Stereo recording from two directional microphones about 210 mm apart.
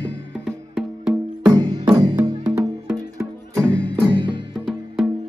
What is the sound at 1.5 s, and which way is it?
Music, 20° right (ahead or behind).